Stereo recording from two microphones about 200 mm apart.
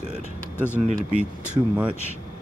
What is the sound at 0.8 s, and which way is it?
Speech, 40° right (ahead or behind).